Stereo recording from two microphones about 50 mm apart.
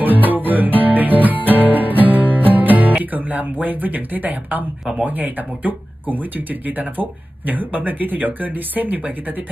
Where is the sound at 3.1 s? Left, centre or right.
Right.